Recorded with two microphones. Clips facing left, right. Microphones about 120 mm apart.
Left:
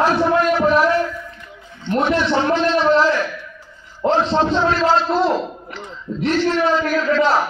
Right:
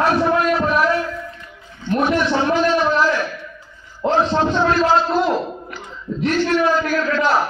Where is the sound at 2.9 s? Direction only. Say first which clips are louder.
Left 3 dB; 30° left (ahead or behind).